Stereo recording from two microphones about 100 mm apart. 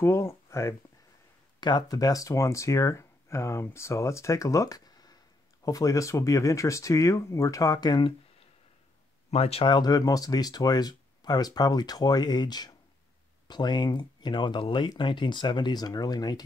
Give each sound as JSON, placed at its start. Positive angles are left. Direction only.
{"t": 0.0, "sound": "speech", "side_deg": 25}
{"t": 1.6, "sound": "speech", "side_deg": 45}
{"t": 9.3, "sound": "speech", "side_deg": 85}
{"t": 9.7, "sound": "speech", "side_deg": 40}